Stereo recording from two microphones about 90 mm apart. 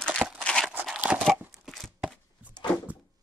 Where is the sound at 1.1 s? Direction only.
10° right (ahead or behind).